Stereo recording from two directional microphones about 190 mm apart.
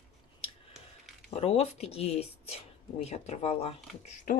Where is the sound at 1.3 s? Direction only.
35° left (ahead or behind).